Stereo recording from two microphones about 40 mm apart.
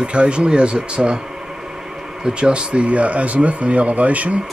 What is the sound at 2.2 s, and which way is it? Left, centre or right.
Speech, right.